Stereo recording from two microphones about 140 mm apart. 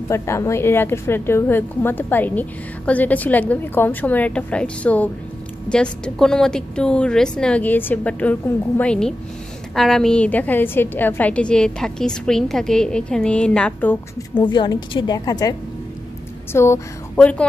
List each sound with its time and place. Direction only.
0.1 s a woman's voice: 20° left (ahead or behind)
14.3 s a woman's voice: 35° left (ahead or behind)
16.5 s a woman's voice: 20° left (ahead or behind)